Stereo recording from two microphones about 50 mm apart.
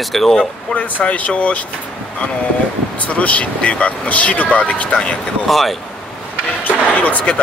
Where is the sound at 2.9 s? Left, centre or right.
Left.